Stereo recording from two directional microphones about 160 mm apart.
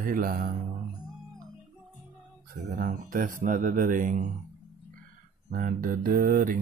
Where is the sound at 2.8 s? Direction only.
55° right (ahead or behind).